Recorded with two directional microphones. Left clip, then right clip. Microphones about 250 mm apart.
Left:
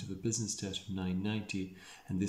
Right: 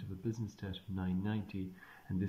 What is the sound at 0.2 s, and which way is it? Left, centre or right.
Speech, centre.